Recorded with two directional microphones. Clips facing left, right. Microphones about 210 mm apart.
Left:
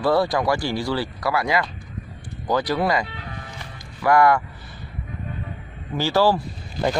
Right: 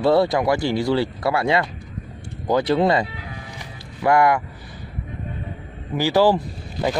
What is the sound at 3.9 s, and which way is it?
Speech, 25° right (ahead or behind).